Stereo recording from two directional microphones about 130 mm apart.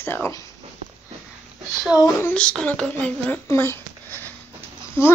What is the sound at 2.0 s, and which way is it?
Speech, 20° left (ahead or behind).